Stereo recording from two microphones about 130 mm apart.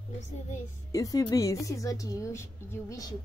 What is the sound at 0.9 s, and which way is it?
A woman's voice, 25° left (ahead or behind).